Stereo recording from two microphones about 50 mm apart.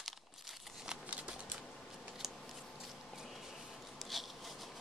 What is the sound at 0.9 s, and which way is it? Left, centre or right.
Shuffling cards, right.